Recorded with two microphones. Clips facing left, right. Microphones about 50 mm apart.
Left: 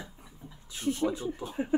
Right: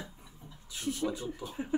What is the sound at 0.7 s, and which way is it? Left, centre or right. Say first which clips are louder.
Speech: left 4 dB; left.